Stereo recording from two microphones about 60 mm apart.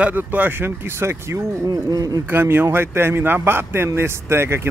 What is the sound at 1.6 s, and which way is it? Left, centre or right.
Speech, right.